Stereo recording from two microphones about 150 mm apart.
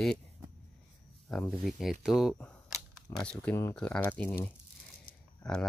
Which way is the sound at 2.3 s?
10° left (ahead or behind).